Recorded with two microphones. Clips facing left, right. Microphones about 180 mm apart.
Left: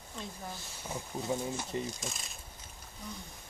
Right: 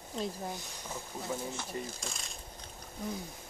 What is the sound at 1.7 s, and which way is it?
Speech, 20° left (ahead or behind).